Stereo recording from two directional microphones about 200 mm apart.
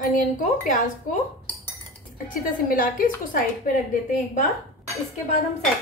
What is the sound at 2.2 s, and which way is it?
A woman's voice, 45° left (ahead or behind).